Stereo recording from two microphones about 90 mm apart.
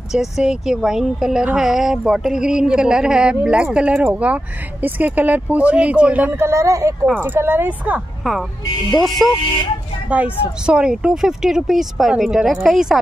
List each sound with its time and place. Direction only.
0.1 s a woman's voice: 5° right (ahead or behind)
6.3 s speech: 30° right (ahead or behind)
7.2 s speech: 25° right (ahead or behind)
8.2 s speech: centre (ahead or behind)
10.0 s speech: 15° right (ahead or behind)